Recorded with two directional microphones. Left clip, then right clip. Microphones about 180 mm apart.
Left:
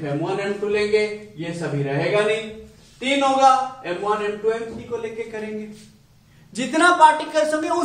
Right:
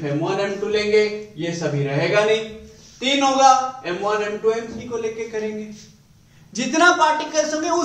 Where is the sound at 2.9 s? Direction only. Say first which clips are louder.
Right 1 dB; centre (ahead or behind).